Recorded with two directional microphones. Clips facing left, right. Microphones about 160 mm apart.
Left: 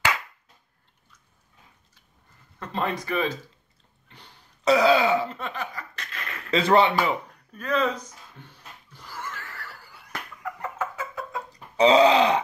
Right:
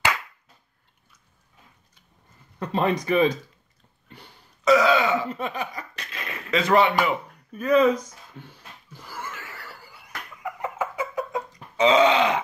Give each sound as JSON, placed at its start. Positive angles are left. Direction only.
{"t": 2.6, "sound": "speech", "side_deg": -20}
{"t": 4.6, "sound": "throat clearing", "side_deg": 30}
{"t": 5.3, "sound": "a sound", "side_deg": -15}
{"t": 6.5, "sound": "a man's voice", "side_deg": 30}
{"t": 7.5, "sound": "speech", "side_deg": -10}
{"t": 8.9, "sound": "wheeze", "side_deg": -5}
{"t": 10.4, "sound": "chicken", "side_deg": -10}
{"t": 11.5, "sound": "speech", "side_deg": 35}